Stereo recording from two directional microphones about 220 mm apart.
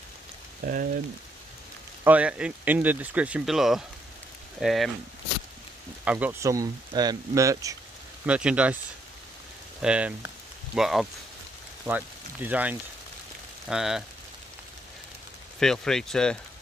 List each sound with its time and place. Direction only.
0.6 s speech: 40° right (ahead or behind)
2.0 s speech: 5° right (ahead or behind)
6.0 s speech: 5° right (ahead or behind)
9.8 s speech: 5° right (ahead or behind)
15.6 s speech: centre (ahead or behind)